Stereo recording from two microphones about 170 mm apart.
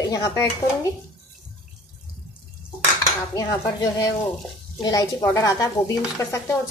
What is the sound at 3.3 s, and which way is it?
Speech, 20° left (ahead or behind).